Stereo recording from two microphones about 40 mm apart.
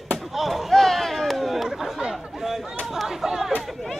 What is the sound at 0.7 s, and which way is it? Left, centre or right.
Chatter, centre.